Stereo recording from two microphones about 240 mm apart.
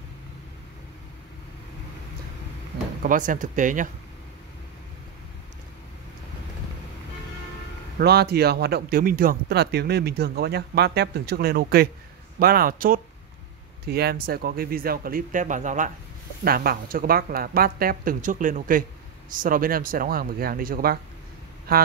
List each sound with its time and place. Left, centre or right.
3.0 s speech: right
8.0 s speech: right